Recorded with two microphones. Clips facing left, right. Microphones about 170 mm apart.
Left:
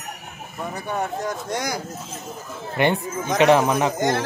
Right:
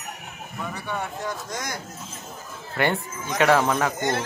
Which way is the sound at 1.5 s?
75° left (ahead or behind).